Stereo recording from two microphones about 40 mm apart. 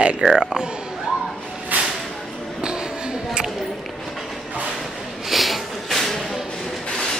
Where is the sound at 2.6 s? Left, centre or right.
Right.